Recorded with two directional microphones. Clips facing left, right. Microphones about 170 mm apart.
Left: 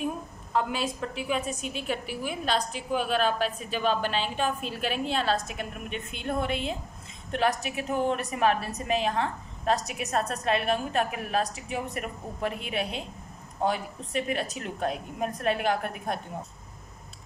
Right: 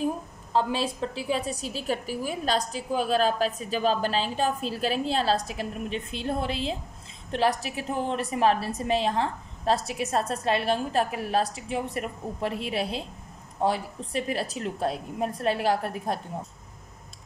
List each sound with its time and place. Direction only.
0.0 s a woman's voice: 30° right (ahead or behind)